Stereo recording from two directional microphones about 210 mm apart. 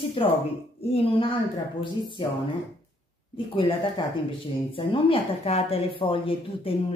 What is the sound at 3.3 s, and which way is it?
A woman's voice, 25° left (ahead or behind).